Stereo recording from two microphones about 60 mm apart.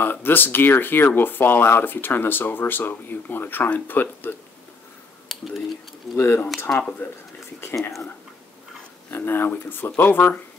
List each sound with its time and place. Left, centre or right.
0.0 s speech: left
5.3 s a sound: centre
6.1 s speech: left
6.7 s speech: centre
9.1 s speech: left